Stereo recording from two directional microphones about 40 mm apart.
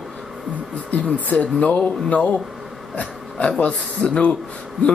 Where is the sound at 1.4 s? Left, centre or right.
Left.